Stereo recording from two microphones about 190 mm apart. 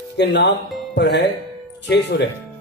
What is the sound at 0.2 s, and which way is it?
Speech, 65° left (ahead or behind).